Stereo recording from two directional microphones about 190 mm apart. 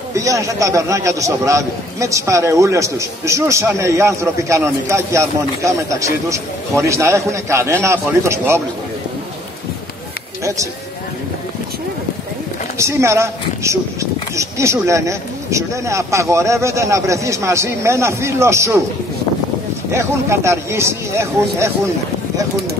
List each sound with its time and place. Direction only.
0.1 s a man's voice: 15° right (ahead or behind)
12.7 s a man's voice: 15° right (ahead or behind)
19.9 s a man's voice: 15° right (ahead or behind)